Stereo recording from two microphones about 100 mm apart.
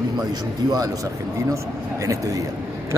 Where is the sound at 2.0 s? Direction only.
35° right (ahead or behind).